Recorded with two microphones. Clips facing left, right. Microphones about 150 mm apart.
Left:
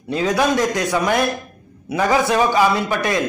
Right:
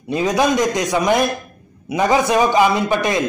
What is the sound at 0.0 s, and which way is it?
A man's voice, 20° right (ahead or behind).